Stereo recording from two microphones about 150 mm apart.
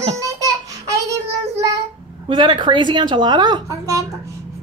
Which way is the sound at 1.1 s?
20° right (ahead or behind).